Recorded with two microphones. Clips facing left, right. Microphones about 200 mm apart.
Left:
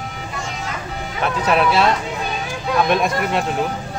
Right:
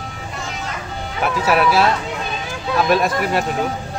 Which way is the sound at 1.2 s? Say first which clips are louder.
Right 1 dB; 5° right (ahead or behind).